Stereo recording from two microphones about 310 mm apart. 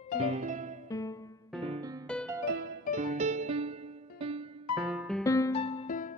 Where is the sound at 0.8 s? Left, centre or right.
Centre.